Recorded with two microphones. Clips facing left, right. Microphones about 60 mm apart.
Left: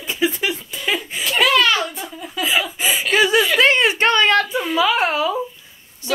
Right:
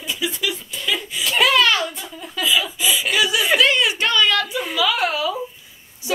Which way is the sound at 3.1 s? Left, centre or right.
Left.